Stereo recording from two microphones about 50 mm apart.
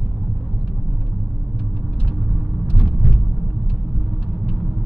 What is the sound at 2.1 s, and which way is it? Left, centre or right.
Vehicle, centre.